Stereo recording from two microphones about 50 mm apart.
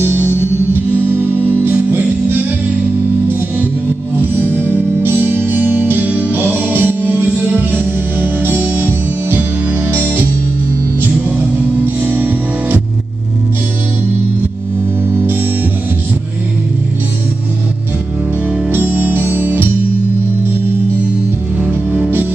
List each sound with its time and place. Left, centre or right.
0.0 s music: right
4.2 s music: right
15.0 s music: right
18.7 s music: right
21.5 s music: right